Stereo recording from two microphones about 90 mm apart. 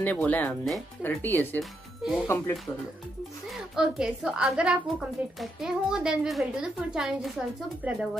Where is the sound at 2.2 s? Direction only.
30° left (ahead or behind).